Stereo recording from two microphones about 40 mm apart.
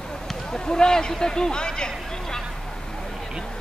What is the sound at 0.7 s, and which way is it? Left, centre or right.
Speech, centre.